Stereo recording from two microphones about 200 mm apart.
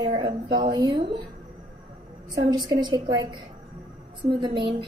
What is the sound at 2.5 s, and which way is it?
Speech, 20° right (ahead or behind).